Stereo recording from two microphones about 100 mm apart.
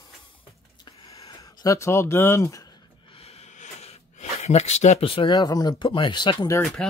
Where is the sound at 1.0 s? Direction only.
75° left (ahead or behind).